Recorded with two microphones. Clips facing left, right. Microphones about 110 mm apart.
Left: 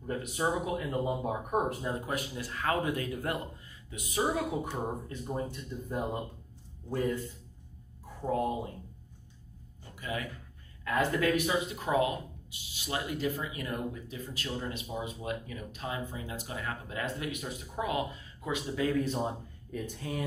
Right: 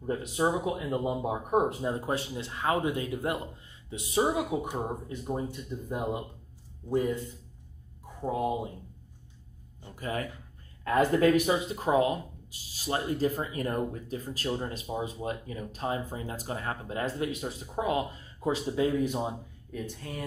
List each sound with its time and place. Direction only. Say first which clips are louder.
0.0 s speech: right 4 dB; 20° right (ahead or behind)
4.2 s speech: right 3 dB; 20° right (ahead or behind)
8.2 s speech: right 1 dB; 15° right (ahead or behind)
9.9 s speech: right 3 dB; 40° right (ahead or behind)
18.9 s speech: left 1 dB; 15° right (ahead or behind)
19.1 s speech: right 1 dB; 5° right (ahead or behind)